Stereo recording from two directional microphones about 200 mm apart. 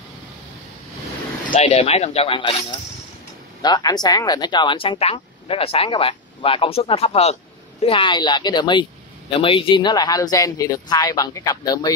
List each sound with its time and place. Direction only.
1.5 s speech: 30° left (ahead or behind)
3.6 s speech: 20° left (ahead or behind)